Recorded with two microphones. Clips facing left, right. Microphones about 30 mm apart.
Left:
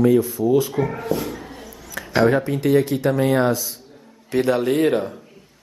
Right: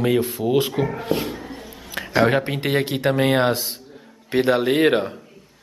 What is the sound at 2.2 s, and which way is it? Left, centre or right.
A man's voice, right.